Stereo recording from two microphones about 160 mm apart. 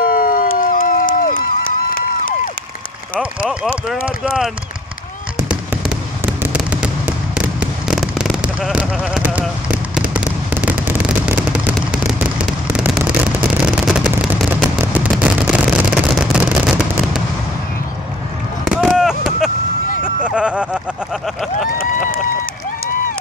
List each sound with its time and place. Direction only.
0.2 s crowd: 60° left (ahead or behind)
3.2 s speech: 5° right (ahead or behind)
5.5 s fireworks: 5° right (ahead or behind)
18.6 s a sound: 5° right (ahead or behind)
21.7 s run: 65° left (ahead or behind)